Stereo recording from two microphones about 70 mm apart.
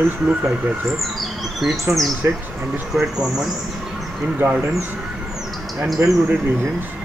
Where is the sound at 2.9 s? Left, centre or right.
Centre.